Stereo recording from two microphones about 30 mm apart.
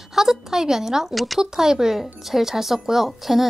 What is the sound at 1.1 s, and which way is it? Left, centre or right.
Speech, centre.